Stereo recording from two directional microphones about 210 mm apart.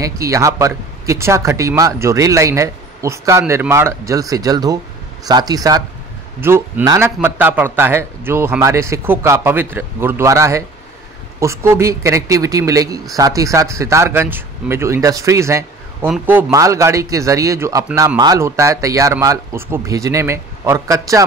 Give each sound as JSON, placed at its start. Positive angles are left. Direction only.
{"t": 0.0, "sound": "speech", "side_deg": -15}